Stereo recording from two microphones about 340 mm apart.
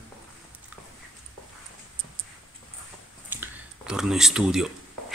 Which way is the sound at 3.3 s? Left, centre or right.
Centre.